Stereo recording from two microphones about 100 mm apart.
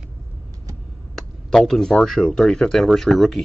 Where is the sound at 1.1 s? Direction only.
5° left (ahead or behind).